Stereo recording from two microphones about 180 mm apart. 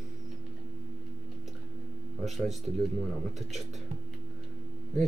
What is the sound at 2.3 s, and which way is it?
Speech, centre (ahead or behind).